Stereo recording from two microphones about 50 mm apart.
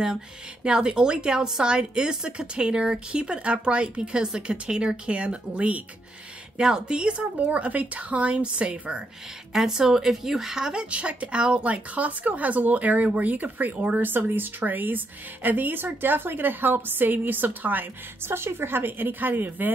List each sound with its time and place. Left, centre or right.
0.7 s speech: centre
9.5 s speech: centre; by 14.0 s right
14.0 s speech: right
18.2 s a woman's voice: right